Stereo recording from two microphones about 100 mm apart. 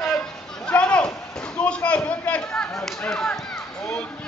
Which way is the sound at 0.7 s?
10° left (ahead or behind).